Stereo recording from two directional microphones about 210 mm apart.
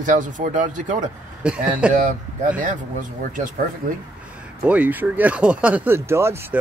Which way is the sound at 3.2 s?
40° right (ahead or behind).